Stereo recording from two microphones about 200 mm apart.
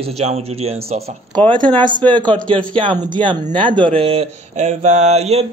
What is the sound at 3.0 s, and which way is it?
Speech, 25° right (ahead or behind).